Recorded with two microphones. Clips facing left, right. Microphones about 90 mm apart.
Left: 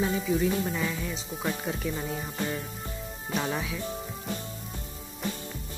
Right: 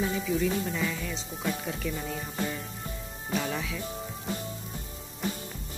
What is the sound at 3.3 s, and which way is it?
Speech, 25° left (ahead or behind).